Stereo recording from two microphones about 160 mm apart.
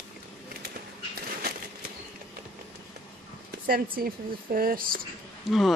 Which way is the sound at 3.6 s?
65° right (ahead or behind).